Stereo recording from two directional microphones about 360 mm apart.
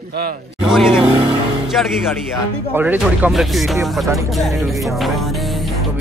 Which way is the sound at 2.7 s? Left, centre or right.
Centre.